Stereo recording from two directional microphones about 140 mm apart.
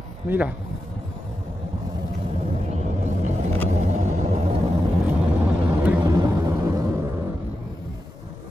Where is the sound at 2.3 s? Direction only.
45° right (ahead or behind).